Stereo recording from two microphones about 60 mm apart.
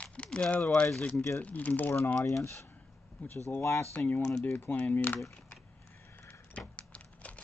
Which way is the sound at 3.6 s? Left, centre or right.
Left.